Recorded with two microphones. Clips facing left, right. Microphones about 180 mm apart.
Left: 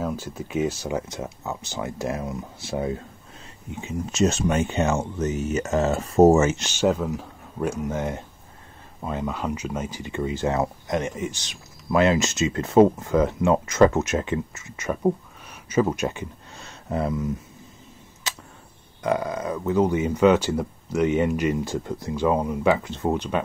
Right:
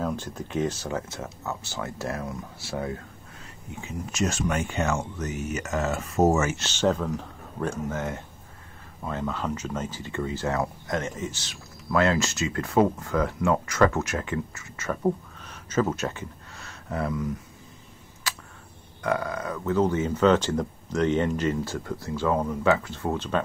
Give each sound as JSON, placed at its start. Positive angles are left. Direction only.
{"t": 0.0, "sound": "speech", "side_deg": 5}
{"t": 6.6, "sound": "speech", "side_deg": 10}
{"t": 18.3, "sound": "tick", "side_deg": 20}
{"t": 19.0, "sound": "speech", "side_deg": 20}